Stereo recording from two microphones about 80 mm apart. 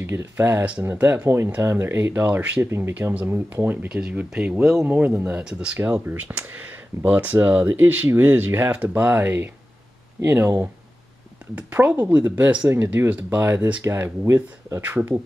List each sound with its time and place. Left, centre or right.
0.0 s speech: right
2.6 s speech: right
4.0 s speech: centre
11.5 s speech: right
14.8 s speech: right